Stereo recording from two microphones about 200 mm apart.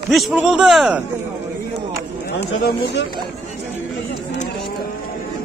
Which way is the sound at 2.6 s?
60° left (ahead or behind).